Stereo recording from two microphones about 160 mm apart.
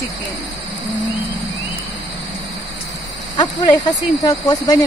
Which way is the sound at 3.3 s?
25° left (ahead or behind).